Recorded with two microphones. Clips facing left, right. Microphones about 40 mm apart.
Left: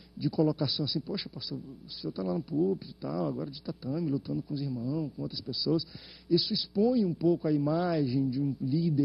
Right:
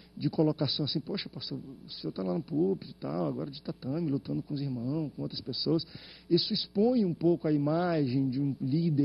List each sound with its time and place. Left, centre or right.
0.2 s a man's voice: right